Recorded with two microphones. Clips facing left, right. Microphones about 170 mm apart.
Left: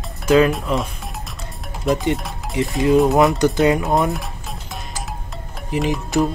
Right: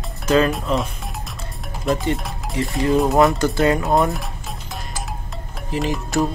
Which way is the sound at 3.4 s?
15° left (ahead or behind).